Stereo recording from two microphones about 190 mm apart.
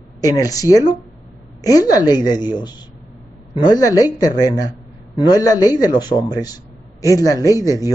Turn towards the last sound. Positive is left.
turn(degrees=20)  # may be behind; listen again after turning